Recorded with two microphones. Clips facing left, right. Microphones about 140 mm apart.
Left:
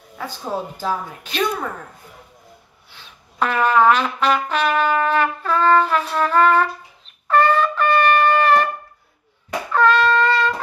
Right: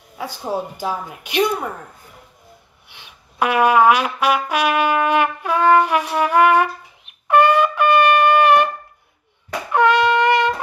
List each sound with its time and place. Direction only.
0.2 s a woman's voice: 15° right (ahead or behind)
2.9 s music: 15° right (ahead or behind)
7.2 s wind instrument: 15° right (ahead or behind)
9.7 s wind instrument: 15° right (ahead or behind)